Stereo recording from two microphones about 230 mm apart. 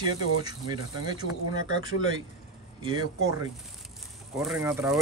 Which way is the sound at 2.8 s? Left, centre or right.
Centre.